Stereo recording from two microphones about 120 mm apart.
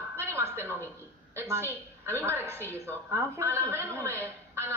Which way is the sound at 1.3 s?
20° right (ahead or behind).